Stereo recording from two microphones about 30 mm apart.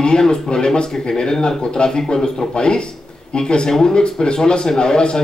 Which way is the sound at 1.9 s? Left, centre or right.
Centre.